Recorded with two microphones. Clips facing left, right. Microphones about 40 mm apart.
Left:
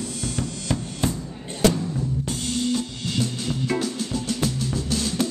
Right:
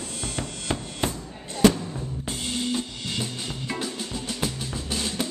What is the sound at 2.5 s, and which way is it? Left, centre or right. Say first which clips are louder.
Drum kit: left 3 dB; centre.